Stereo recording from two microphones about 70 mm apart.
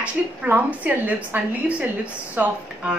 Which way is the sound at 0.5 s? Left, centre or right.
Right.